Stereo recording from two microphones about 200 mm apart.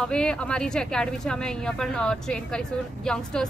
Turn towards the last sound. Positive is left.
turn(degrees=5)  # may be behind; listen again after turning